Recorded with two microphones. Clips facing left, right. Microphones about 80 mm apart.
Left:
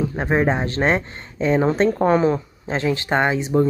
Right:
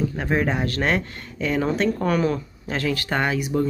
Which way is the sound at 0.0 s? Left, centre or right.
Left.